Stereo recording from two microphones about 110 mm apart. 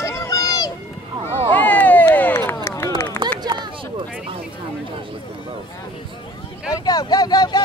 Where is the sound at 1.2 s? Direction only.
70° right (ahead or behind).